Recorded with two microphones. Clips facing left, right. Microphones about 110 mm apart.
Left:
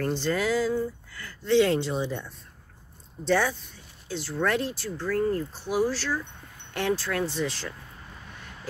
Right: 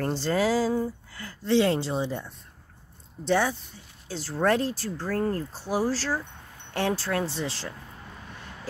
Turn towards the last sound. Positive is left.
turn(degrees=-30)  # may be behind; listen again after turning